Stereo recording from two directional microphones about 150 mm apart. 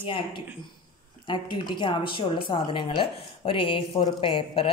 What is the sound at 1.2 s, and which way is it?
Speech, 30° left (ahead or behind).